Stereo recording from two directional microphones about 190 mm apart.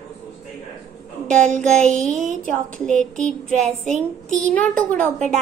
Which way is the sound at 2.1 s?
40° right (ahead or behind).